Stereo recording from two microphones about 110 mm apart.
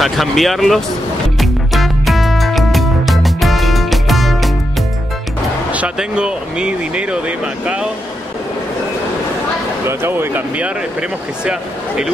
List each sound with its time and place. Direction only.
0.0 s speech: centre (ahead or behind)
1.4 s music: centre (ahead or behind)
5.7 s speech: 10° right (ahead or behind)
9.8 s speech: 20° right (ahead or behind)